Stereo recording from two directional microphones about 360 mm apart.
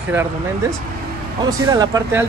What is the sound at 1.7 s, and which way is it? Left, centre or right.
Speech, centre.